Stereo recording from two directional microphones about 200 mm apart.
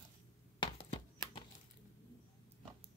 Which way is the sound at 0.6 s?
25° left (ahead or behind).